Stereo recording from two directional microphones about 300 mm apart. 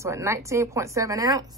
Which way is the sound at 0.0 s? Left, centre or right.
Centre.